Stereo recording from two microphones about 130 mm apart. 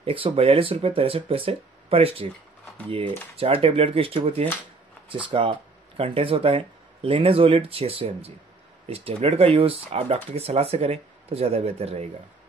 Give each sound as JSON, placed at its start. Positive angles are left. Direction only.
{"t": 0.0, "sound": "speech", "side_deg": -45}
{"t": 3.3, "sound": "speech", "side_deg": -50}